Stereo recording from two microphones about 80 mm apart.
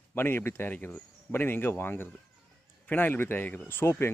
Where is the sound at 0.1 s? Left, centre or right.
Left.